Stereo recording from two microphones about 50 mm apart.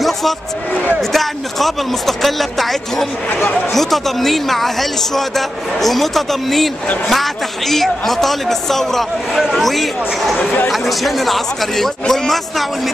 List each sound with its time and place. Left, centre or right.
1.1 s speech: centre
3.3 s speech: left
3.7 s speech: centre